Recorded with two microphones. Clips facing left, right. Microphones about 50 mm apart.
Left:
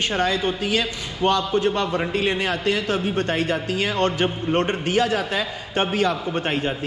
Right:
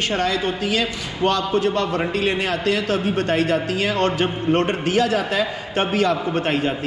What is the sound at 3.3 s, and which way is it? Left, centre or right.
Speech, right.